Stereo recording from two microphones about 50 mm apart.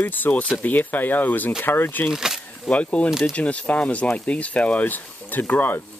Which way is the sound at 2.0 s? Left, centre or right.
Centre.